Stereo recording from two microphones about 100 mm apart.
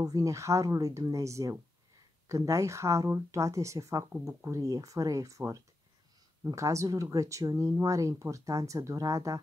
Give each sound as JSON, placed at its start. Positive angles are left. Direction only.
{"t": 0.0, "sound": "speech", "side_deg": -35}
{"t": 4.6, "sound": "speech", "side_deg": -35}